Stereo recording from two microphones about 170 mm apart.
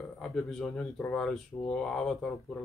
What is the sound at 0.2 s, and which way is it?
Speech, centre (ahead or behind).